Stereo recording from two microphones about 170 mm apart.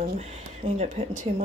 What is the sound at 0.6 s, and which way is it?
Speech, 45° right (ahead or behind).